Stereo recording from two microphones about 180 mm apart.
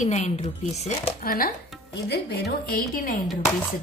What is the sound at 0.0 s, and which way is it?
Speech, 40° left (ahead or behind).